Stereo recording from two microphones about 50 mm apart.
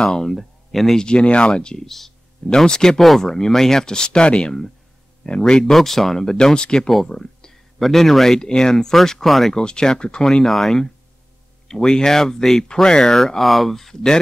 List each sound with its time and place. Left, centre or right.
0.0 s speech: centre
0.3 s speech: centre
1.0 s speech: centre
1.9 s a sound: centre
2.5 s speech: centre
5.7 s speech: centre
7.1 s a sound: centre
7.8 s speech: centre
9.5 s speech: centre
10.2 s speech: centre